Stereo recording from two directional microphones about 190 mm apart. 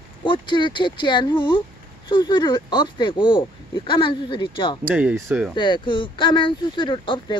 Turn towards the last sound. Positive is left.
turn(degrees=25)  # may be behind; listen again after turning